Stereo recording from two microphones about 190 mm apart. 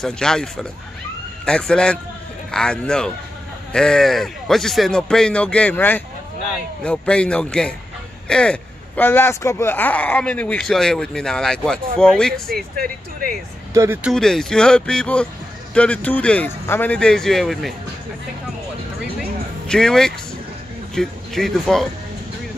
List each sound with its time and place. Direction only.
0.0 s speech: 5° left (ahead or behind)
12.7 s speech: 50° right (ahead or behind)
13.7 s speech: 10° right (ahead or behind)
14.1 s speech: 5° left (ahead or behind)
19.7 s speech: 5° left (ahead or behind)